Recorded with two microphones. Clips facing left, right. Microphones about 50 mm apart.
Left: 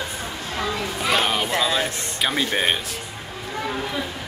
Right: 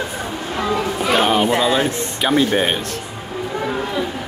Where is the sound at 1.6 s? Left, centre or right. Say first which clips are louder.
Right 5 dB; centre.